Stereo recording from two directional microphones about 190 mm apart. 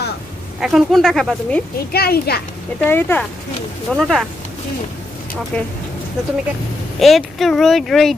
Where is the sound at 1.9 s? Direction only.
55° left (ahead or behind).